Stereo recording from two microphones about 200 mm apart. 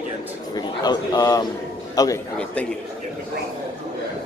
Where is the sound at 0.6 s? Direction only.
20° left (ahead or behind).